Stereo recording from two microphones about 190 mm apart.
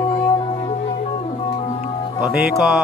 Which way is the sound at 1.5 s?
35° left (ahead or behind).